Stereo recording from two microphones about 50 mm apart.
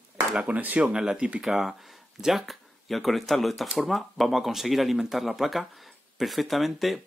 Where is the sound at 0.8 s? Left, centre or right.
Centre.